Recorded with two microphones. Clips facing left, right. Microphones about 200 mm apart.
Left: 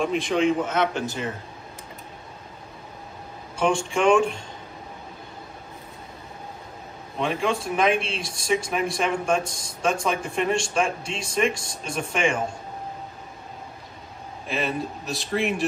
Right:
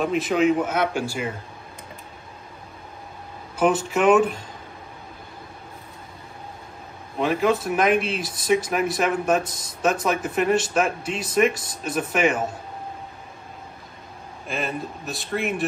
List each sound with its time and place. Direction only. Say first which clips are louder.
0.0 s speech: right 2 dB; 5° right (ahead or behind)
3.5 s speech: right 2 dB; 5° right (ahead or behind)
7.2 s speech: right 4 dB; 5° right (ahead or behind)
7.9 s speech: right 4 dB; 25° left (ahead or behind)
8.5 s speech: right 3 dB; 5° right (ahead or behind)
14.5 s speech: left 1 dB; centre (ahead or behind)